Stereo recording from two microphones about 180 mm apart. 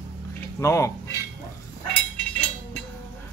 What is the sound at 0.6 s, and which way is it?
Speech, 15° left (ahead or behind).